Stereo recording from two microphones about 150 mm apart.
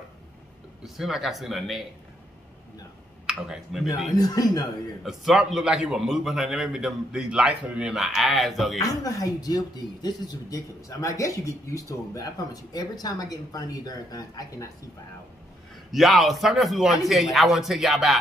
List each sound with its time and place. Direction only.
0.8 s a man's voice: centre (ahead or behind)
3.3 s a man's voice: 5° right (ahead or behind)
4.2 s speech: 25° left (ahead or behind)
5.0 s a man's voice: 5° right (ahead or behind)
8.8 s speech: 25° left (ahead or behind)
15.9 s a man's voice: centre (ahead or behind)